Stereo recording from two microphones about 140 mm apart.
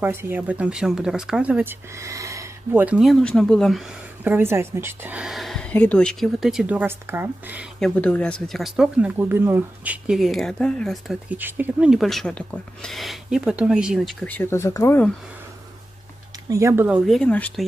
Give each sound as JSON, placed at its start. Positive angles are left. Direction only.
{"t": 0.0, "sound": "speech", "side_deg": -15}
{"t": 4.2, "sound": "speech", "side_deg": -15}
{"t": 7.8, "sound": "speech", "side_deg": 10}
{"t": 11.2, "sound": "speech", "side_deg": -10}
{"t": 14.2, "sound": "speech", "side_deg": 15}
{"t": 16.4, "sound": "speech", "side_deg": -20}
{"t": 17.0, "sound": "speech", "side_deg": 5}